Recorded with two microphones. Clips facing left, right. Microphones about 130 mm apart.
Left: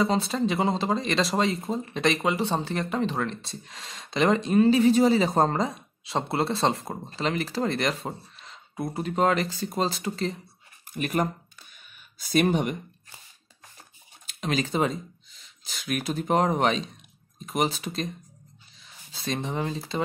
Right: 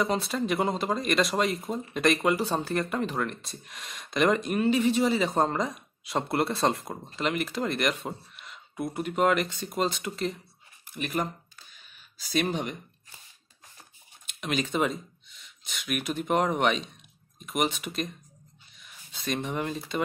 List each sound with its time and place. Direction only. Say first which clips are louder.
0.0 s speech: left 3 dB; 30° left (ahead or behind)
10.9 s speech: left 4 dB; 50° left (ahead or behind)
12.3 s speech: left 5 dB; 50° left (ahead or behind)
14.2 s speech: left 2 dB; 35° left (ahead or behind)